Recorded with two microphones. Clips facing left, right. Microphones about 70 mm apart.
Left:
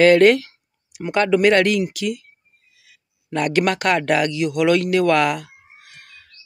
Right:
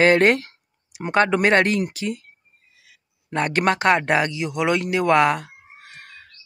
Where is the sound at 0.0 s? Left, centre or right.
Right.